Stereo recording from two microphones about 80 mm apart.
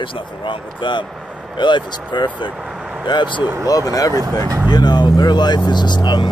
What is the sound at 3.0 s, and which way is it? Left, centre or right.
Speech, left.